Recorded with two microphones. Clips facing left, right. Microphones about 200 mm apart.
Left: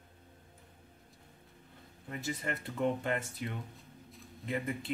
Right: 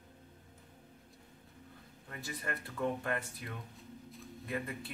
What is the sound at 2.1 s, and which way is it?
Speech, 20° left (ahead or behind).